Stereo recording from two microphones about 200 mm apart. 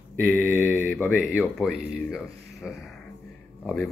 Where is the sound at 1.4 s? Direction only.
5° right (ahead or behind).